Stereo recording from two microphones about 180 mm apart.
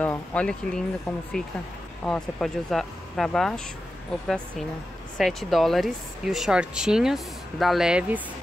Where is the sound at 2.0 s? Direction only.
5° left (ahead or behind).